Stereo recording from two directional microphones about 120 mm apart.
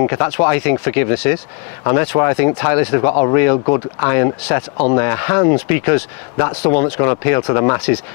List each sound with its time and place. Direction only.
0.0 s speech: 25° left (ahead or behind)